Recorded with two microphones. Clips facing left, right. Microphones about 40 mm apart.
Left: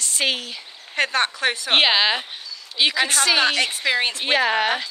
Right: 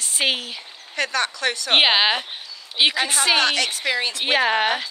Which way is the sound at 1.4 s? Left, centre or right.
Left.